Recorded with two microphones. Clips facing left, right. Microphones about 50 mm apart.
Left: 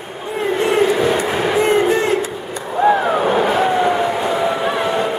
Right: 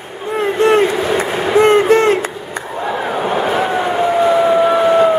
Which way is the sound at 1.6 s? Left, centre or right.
Right.